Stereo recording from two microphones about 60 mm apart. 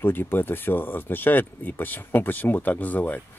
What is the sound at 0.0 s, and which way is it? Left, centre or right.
Speech, left.